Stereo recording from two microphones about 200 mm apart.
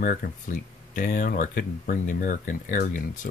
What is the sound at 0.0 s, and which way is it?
Speech, 45° left (ahead or behind).